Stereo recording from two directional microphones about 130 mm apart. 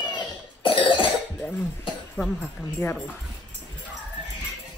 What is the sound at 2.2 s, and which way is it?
Speech, 10° left (ahead or behind).